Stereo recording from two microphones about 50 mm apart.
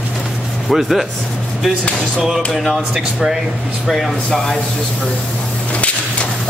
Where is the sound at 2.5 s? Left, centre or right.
Centre.